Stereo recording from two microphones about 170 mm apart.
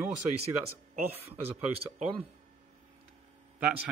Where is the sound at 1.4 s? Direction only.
35° right (ahead or behind).